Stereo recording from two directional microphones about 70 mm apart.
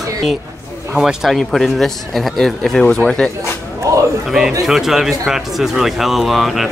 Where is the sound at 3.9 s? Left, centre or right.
Right.